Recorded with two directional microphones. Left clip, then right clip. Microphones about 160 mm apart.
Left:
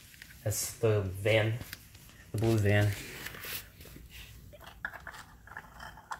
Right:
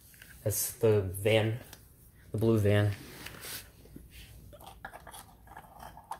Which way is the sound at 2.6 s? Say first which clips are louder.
Right 1 dB; 25° right (ahead or behind).